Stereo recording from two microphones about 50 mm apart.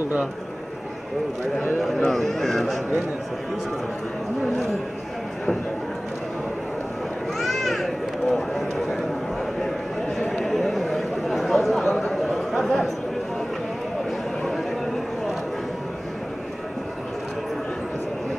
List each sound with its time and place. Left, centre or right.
1.8 s speech: centre
4.4 s speech: centre
7.3 s run: centre
9.6 s a sound: centre